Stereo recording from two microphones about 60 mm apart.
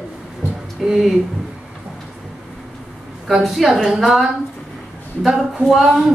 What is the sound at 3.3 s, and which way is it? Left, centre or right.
A woman's voice, centre.